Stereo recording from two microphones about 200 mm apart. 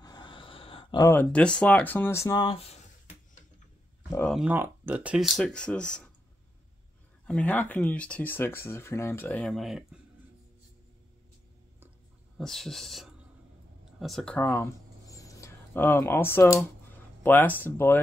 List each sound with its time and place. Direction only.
0.0 s a sound: 20° left (ahead or behind)
1.0 s speech: 10° left (ahead or behind); by 2.8 s 30° left (ahead or behind)
4.3 s speech: 5° right (ahead or behind)
7.2 s speech: 5° left (ahead or behind)
12.4 s speech: centre (ahead or behind)
13.9 s a sound: centre (ahead or behind)
17.2 s speech: 10° left (ahead or behind)